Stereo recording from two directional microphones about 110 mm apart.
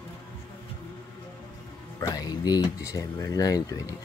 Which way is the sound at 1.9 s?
35° left (ahead or behind).